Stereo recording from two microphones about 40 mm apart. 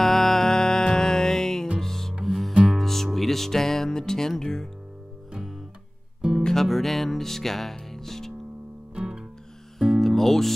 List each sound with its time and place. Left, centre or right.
0.0 s music: centre
6.4 s music: centre
8.9 s music: centre
9.8 s music: centre